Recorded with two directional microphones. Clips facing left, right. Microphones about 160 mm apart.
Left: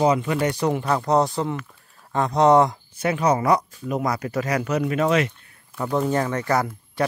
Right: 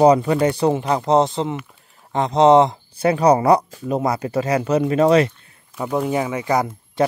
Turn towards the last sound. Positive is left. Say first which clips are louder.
# right 4 dB
turn(degrees=-20)  # may be behind; listen again after turning